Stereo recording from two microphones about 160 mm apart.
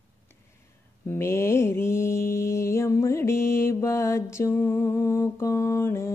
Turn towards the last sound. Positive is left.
turn(degrees=15)  # may be behind; listen again after turning